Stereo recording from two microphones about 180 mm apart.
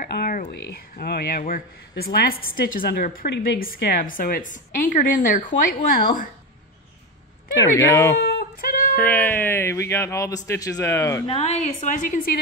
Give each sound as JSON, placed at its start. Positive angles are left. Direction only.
{"t": 0.1, "sound": "speech", "side_deg": 55}
{"t": 7.5, "sound": "speech", "side_deg": 20}
{"t": 8.2, "sound": "a sound", "side_deg": 60}
{"t": 8.9, "sound": "speech", "side_deg": 10}
{"t": 11.2, "sound": "a woman's voice", "side_deg": 35}